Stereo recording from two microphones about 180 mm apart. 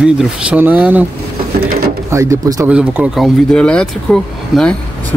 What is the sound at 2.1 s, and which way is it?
Speech, 15° right (ahead or behind).